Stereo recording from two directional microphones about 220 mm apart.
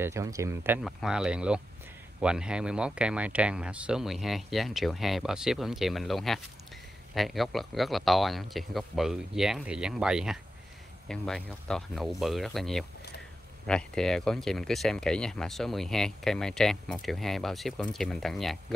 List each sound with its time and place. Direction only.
0.0 s speech: 15° right (ahead or behind)